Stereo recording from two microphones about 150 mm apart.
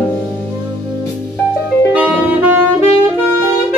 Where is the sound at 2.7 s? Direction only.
45° left (ahead or behind).